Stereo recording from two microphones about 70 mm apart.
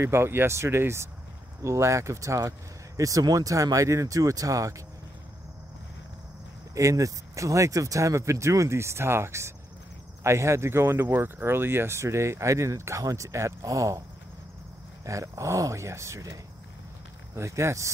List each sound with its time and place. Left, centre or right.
0.0 s speech: right
6.7 s speech: right
15.0 s speech: right
17.4 s speech: right